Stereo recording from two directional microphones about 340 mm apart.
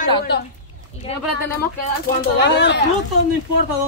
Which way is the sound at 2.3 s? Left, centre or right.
Left.